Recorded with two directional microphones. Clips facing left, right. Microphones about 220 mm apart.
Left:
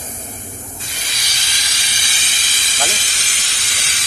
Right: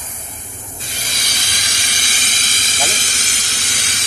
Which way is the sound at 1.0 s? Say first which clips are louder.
Right 4 dB; 50° right (ahead or behind).